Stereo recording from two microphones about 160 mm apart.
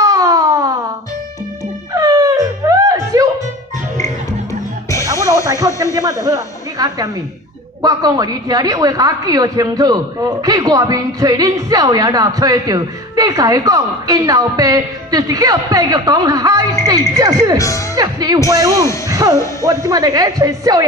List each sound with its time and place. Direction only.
0.0 s a sound: 20° right (ahead or behind)
2.0 s music: 20° right (ahead or behind)
5.0 s music: 20° right (ahead or behind)
5.9 s a woman's voice: 20° right (ahead or behind)
17.6 s speech: 20° left (ahead or behind)
17.9 s a woman's voice: 25° right (ahead or behind)
19.0 s music: 20° right (ahead or behind)
19.6 s a woman's voice: 20° right (ahead or behind)